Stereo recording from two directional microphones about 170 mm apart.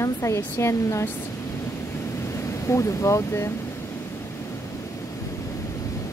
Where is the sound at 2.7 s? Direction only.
15° left (ahead or behind).